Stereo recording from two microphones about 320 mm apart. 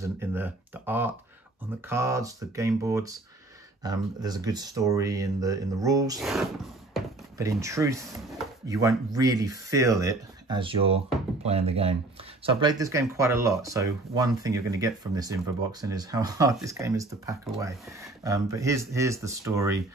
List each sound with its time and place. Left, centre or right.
0.0 s speech: centre